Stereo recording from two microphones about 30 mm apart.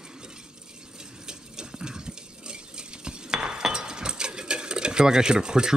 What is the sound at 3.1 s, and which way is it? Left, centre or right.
Cutlery, right.